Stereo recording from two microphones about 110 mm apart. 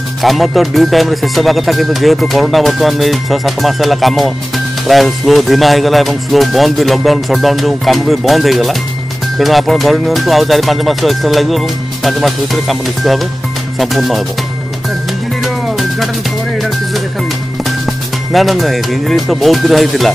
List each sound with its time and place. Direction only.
0.2 s speech: centre (ahead or behind)
15.4 s music: centre (ahead or behind)
18.3 s speech: centre (ahead or behind)